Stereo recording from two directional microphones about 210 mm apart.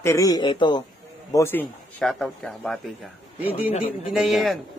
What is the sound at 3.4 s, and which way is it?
Speech, 30° left (ahead or behind).